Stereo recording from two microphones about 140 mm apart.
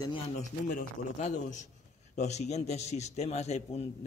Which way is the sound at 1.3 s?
60° left (ahead or behind).